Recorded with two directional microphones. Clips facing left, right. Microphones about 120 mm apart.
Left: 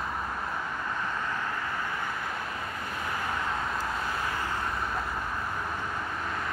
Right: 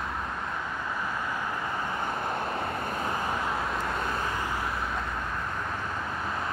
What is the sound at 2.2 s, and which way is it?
Vehicle, 30° right (ahead or behind).